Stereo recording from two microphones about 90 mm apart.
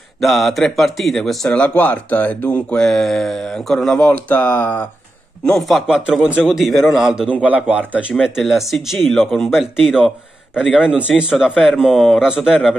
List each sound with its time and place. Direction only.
0.2 s speech: centre (ahead or behind)
1.6 s speech: 15° left (ahead or behind)
5.4 s speech: centre (ahead or behind)
7.4 s speech: 15° right (ahead or behind)
8.2 s speech: centre (ahead or behind)